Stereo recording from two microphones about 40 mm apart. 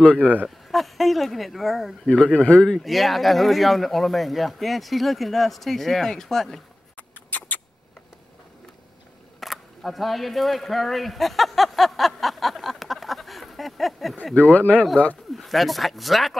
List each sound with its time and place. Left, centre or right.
0.0 s speech: left
0.7 s speech: centre
2.0 s speech: left
2.8 s speech: centre
7.0 s rodents: left
9.4 s single-lens reflex camera: centre
14.3 s speech: left
15.3 s speech: centre